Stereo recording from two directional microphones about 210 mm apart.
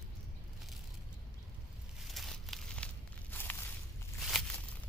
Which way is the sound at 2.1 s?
Centre (ahead or behind).